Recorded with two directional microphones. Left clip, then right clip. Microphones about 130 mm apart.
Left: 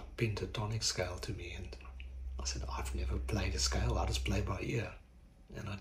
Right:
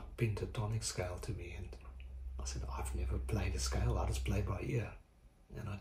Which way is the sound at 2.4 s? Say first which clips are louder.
Left 4 dB; 20° right (ahead or behind).